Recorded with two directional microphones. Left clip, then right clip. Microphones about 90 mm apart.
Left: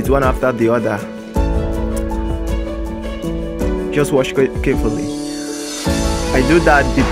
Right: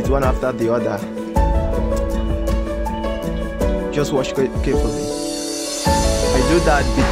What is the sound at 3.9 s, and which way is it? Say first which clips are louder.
Speech: left 7 dB; 20° left (ahead or behind).